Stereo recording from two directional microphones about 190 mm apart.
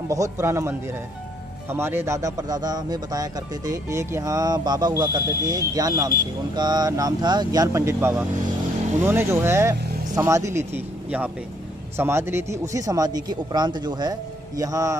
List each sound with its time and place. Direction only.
0.1 s a man's voice: 15° right (ahead or behind)